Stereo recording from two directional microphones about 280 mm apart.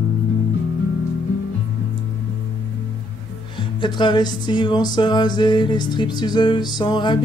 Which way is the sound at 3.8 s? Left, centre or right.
Centre.